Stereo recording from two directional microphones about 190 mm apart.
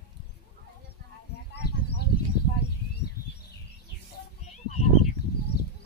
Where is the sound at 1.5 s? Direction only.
60° left (ahead or behind).